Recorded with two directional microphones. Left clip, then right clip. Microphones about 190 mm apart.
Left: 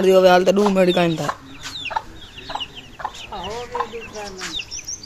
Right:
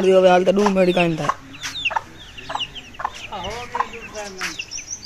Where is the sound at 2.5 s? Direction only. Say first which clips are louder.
Right 2 dB; 15° left (ahead or behind).